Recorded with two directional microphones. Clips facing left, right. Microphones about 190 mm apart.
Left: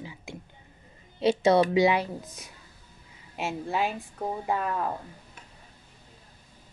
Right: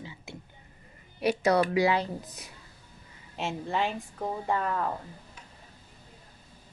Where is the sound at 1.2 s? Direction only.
25° left (ahead or behind).